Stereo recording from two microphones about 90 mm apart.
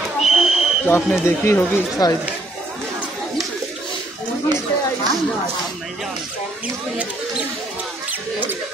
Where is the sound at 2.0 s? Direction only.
45° left (ahead or behind).